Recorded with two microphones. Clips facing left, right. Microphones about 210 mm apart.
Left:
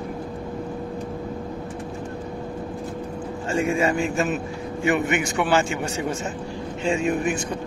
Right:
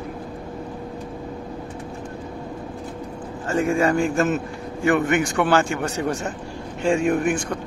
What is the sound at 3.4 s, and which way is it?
A man's voice, 20° left (ahead or behind).